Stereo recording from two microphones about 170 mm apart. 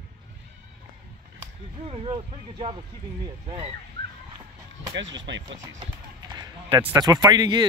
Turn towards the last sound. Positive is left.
turn(degrees=-25)  # may be behind; listen again after turning